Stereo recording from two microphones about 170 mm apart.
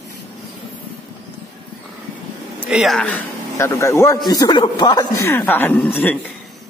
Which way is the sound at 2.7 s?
Centre (ahead or behind).